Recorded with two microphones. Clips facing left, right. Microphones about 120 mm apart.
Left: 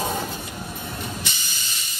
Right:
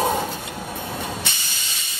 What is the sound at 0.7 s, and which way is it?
Vehicle, 60° right (ahead or behind).